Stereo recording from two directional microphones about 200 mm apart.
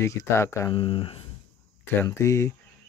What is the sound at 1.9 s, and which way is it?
Speech, 10° left (ahead or behind).